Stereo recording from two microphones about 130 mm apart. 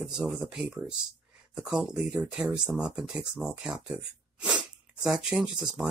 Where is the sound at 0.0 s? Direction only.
5° right (ahead or behind).